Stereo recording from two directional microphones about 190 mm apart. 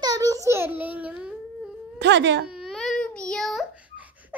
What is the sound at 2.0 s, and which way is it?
Speech, 65° right (ahead or behind).